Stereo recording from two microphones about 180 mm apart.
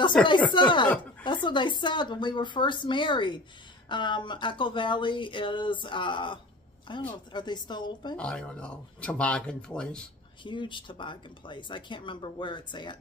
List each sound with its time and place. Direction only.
0.2 s speech: 25° left (ahead or behind)
8.2 s speech: 5° left (ahead or behind)
10.4 s speech: 25° left (ahead or behind)